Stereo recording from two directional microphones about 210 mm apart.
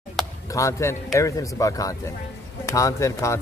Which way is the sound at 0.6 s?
15° left (ahead or behind).